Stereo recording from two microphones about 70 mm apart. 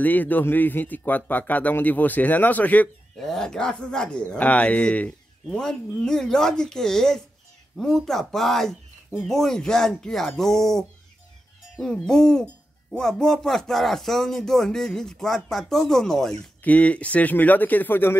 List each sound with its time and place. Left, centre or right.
0.0 s speech: left
3.2 s speech: centre
16.6 s speech: centre